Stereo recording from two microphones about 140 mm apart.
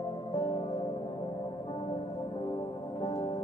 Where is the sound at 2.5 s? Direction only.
35° left (ahead or behind).